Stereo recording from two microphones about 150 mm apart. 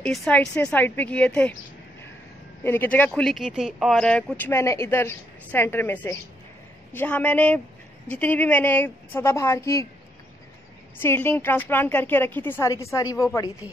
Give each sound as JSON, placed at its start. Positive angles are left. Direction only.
{"t": 0.0, "sound": "speech", "side_deg": 5}
{"t": 2.6, "sound": "speech", "side_deg": 15}
{"t": 3.1, "sound": "speech", "side_deg": 0}
{"t": 11.0, "sound": "speech", "side_deg": 15}